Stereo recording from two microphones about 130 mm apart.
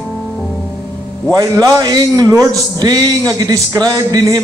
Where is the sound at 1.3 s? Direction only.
30° right (ahead or behind).